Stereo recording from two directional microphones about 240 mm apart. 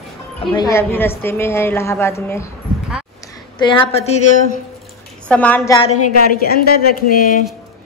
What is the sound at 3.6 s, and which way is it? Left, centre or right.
Speech, left.